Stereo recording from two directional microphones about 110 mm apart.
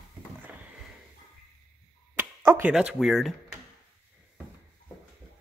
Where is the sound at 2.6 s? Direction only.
10° right (ahead or behind).